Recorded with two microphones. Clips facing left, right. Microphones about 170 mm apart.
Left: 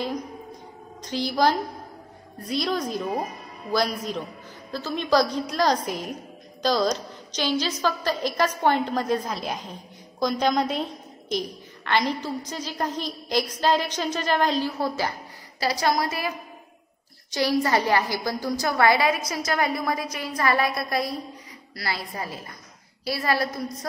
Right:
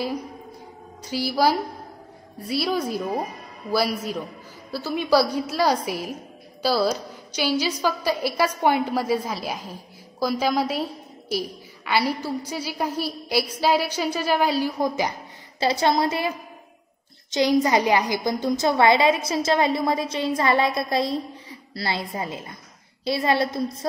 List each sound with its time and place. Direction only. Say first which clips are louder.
1.0 s a woman's voice: right 1 dB; 10° right (ahead or behind); by 23.9 s 25° right (ahead or behind)